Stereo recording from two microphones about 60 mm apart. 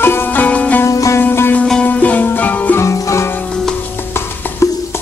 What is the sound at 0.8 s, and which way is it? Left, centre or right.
Music, left.